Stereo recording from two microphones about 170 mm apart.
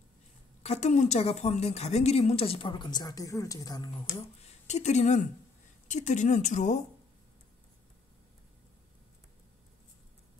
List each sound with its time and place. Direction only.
0.6 s a woman's voice: 40° left (ahead or behind); by 3.9 s 20° left (ahead or behind)
4.6 s speech: 40° left (ahead or behind)